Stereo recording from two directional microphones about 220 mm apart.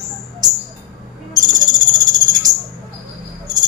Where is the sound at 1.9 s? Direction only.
15° right (ahead or behind).